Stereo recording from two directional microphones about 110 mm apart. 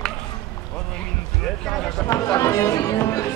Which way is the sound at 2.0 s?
35° left (ahead or behind).